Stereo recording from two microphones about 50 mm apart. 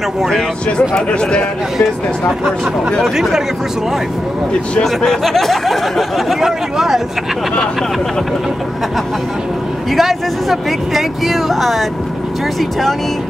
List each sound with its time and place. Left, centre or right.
0.7 s speech: left
3.0 s speech: centre
4.8 s speech: centre
9.8 s speech: centre